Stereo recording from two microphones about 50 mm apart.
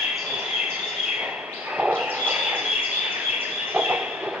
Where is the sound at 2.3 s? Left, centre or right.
Centre.